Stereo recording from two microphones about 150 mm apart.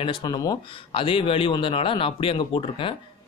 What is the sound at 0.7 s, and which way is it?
A man's voice, 35° left (ahead or behind).